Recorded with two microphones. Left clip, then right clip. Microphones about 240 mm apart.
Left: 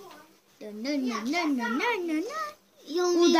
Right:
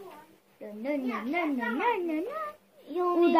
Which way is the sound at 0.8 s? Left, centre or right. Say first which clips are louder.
Left 1 dB; left.